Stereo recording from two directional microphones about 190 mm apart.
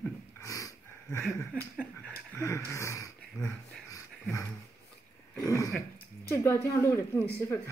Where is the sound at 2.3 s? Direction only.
15° left (ahead or behind).